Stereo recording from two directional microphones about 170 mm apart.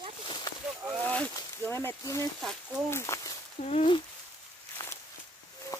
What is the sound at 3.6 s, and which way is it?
Speech, 40° left (ahead or behind).